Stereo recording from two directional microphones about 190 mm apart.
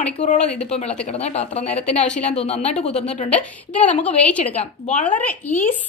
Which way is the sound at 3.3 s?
5° left (ahead or behind).